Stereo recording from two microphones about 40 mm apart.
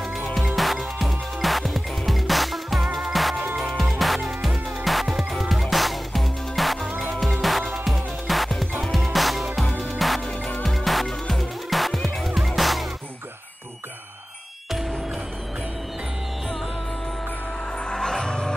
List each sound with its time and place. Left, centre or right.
0.5 s music: centre
9.7 s music: left
9.9 s music: centre
14.7 s music: centre
17.7 s music: centre